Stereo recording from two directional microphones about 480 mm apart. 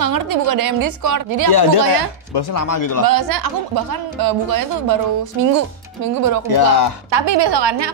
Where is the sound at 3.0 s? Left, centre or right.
Right.